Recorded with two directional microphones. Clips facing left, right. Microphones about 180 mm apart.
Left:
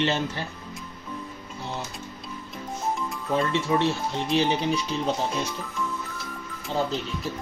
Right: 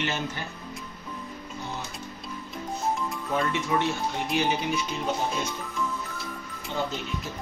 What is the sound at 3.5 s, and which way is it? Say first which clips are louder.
Speech: left 3 dB; 30° left (ahead or behind).